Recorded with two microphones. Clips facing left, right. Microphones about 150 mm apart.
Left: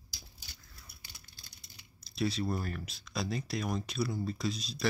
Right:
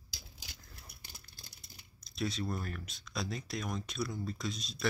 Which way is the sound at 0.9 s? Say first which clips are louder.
Right 2 dB; 55° right (ahead or behind).